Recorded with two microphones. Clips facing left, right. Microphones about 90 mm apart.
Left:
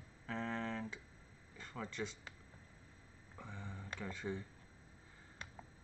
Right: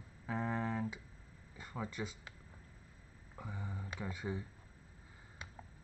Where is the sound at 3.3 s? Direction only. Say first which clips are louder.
Right 4 dB; 10° right (ahead or behind).